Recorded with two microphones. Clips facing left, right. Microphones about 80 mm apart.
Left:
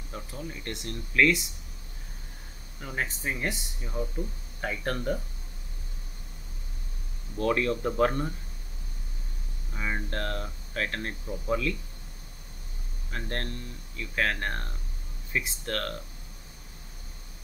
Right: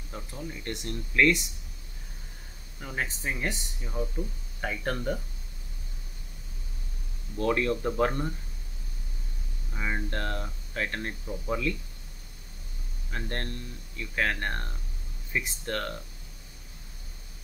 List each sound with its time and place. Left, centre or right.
0.1 s speech: centre
2.8 s speech: centre
7.3 s speech: centre
9.8 s speech: centre
13.1 s speech: centre